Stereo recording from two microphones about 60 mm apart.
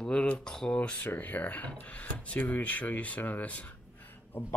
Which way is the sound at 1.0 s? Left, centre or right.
Left.